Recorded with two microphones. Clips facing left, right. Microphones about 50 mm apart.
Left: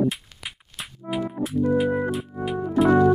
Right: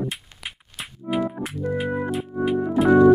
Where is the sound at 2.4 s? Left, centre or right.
Centre.